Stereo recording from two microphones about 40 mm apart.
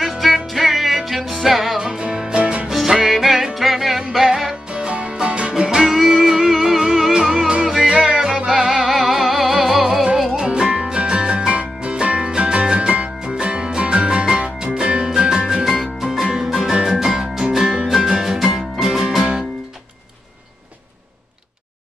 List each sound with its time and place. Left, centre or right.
0.0 s music: centre
1.8 s music: centre
2.9 s music: centre
4.6 s music: right
6.2 s music: centre
10.3 s music: centre
13.2 s music: centre